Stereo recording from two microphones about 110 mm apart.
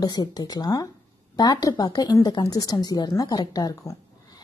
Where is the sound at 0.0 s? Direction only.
40° left (ahead or behind).